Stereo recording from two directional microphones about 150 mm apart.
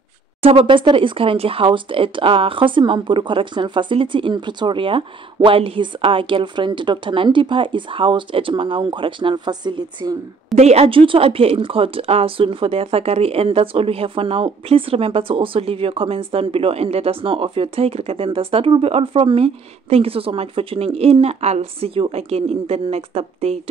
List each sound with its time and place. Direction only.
0.4 s speech: 40° right (ahead or behind)
10.5 s speech: 45° right (ahead or behind)